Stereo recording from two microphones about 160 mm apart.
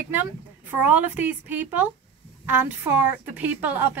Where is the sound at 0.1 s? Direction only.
10° right (ahead or behind).